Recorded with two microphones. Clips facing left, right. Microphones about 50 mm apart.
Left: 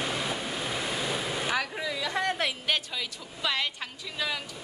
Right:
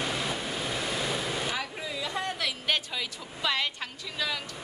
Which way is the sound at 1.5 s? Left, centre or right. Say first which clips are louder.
Left 4 dB; left.